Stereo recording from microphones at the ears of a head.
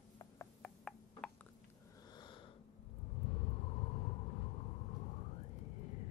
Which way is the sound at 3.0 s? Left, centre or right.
Left.